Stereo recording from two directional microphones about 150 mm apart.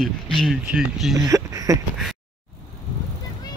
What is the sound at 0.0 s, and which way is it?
Speech, centre (ahead or behind).